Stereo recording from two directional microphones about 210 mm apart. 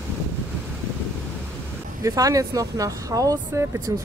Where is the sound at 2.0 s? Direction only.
15° right (ahead or behind).